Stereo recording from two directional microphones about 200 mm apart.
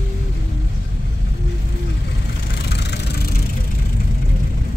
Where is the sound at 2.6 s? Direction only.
55° left (ahead or behind).